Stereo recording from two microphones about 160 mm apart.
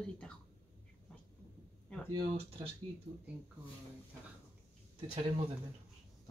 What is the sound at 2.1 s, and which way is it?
Speech, 30° right (ahead or behind).